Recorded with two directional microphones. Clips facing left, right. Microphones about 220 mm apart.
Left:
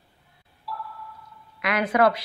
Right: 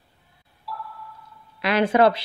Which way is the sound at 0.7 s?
Centre (ahead or behind).